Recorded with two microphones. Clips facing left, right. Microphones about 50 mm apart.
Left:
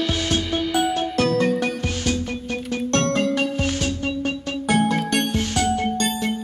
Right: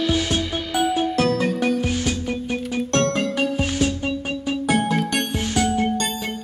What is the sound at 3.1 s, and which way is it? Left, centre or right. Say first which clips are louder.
Music: left 1 dB; centre.